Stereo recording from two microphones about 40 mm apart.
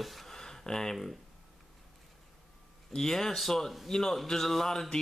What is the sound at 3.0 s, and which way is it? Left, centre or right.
Speech, centre.